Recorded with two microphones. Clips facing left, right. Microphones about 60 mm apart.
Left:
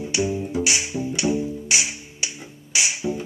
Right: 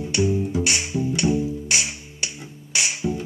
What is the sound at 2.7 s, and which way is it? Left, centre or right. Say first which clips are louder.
Music: left 1 dB; right.